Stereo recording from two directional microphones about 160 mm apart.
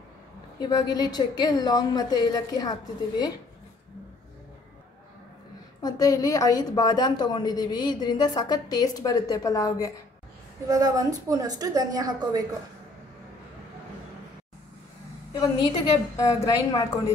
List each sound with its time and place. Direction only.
0.6 s a woman's voice: 25° left (ahead or behind)
5.8 s a woman's voice: 20° left (ahead or behind)
10.7 s a woman's voice: 25° right (ahead or behind)
15.3 s a woman's voice: 25° left (ahead or behind)